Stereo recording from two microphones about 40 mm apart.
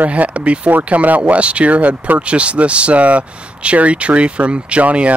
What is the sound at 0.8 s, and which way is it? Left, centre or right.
Speech, right.